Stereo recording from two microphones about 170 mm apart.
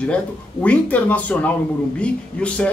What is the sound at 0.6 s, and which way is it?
A man's voice, 10° left (ahead or behind).